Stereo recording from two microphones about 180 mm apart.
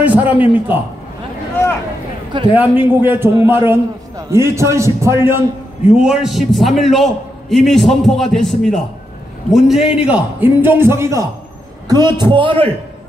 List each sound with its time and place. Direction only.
0.0 s a man's voice: 10° right (ahead or behind)
2.5 s a man's voice: 10° right (ahead or behind)
5.9 s a man's voice: centre (ahead or behind); by 12.7 s 30° right (ahead or behind)